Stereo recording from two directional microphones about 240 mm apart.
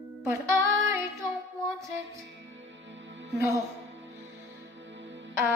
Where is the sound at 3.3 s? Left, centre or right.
Centre.